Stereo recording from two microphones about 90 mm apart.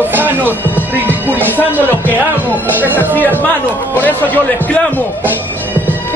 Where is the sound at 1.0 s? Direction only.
20° right (ahead or behind).